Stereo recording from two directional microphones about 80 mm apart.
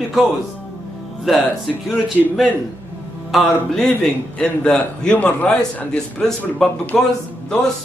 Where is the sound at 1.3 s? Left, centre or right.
Centre.